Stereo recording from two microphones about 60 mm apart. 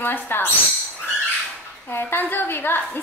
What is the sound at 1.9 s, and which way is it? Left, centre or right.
Speech, left.